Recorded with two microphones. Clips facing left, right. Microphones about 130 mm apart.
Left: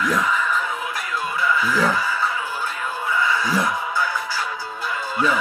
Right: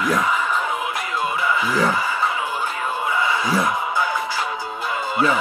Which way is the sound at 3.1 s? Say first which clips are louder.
Left 1 dB; 20° right (ahead or behind).